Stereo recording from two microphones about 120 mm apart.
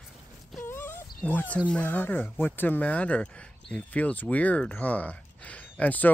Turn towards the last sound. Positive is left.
turn(degrees=15)  # may be behind; listen again after turning